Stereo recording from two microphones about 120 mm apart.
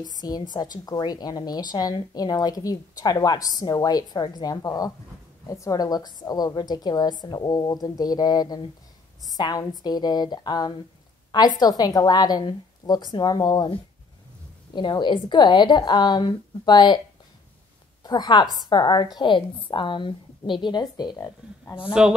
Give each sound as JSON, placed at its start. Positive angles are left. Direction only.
{"t": 0.0, "sound": "a woman's voice", "side_deg": 35}
{"t": 18.0, "sound": "a woman's voice", "side_deg": 35}